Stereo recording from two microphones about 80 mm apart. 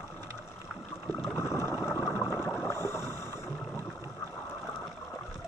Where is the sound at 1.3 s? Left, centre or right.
Left.